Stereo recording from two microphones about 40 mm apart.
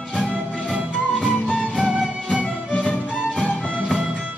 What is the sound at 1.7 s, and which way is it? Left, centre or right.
Music, centre.